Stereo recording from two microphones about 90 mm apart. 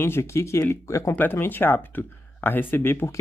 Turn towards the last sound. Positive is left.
turn(degrees=25)  # may be behind; listen again after turning